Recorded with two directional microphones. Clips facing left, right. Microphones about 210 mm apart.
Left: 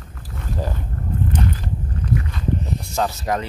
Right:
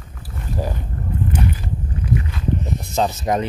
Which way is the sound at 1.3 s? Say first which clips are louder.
Right 1 dB; 10° right (ahead or behind).